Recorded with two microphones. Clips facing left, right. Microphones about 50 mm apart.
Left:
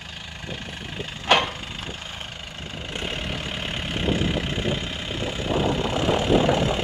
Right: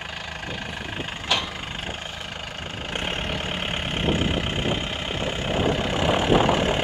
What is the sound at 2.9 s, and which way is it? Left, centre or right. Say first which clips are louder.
Vehicle: right 2 dB; right.